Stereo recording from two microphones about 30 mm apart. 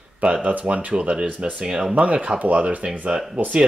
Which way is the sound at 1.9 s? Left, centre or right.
Right.